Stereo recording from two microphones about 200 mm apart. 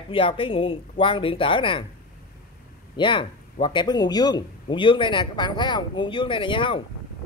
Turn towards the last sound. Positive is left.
turn(degrees=25)  # may be behind; listen again after turning